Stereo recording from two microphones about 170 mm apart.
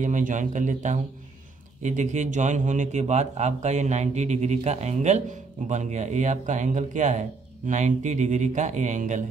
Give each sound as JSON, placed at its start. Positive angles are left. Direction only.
{"t": 0.0, "sound": "speech", "side_deg": -50}